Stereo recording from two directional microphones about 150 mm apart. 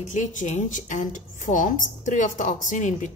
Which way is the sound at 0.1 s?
55° left (ahead or behind).